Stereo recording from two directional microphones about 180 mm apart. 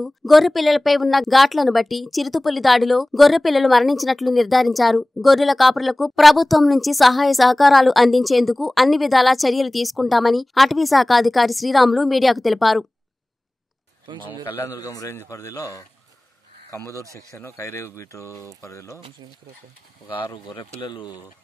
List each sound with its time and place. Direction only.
0.0 s a woman's voice: centre (ahead or behind)
14.1 s a man's voice: 25° right (ahead or behind)
14.4 s speech: 15° left (ahead or behind)
20.8 s speech: 25° left (ahead or behind)